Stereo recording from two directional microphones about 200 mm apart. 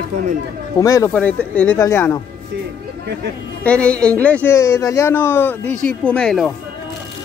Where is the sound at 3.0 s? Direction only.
55° right (ahead or behind).